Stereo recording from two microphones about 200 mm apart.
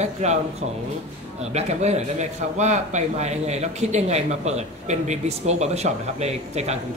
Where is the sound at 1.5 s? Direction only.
35° right (ahead or behind).